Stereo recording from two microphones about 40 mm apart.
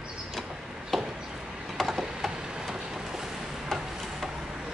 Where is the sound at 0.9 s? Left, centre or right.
Centre.